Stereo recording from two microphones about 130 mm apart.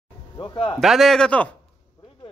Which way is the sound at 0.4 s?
35° left (ahead or behind).